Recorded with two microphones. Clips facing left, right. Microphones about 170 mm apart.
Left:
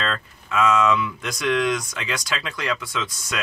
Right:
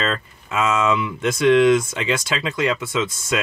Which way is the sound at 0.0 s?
20° right (ahead or behind).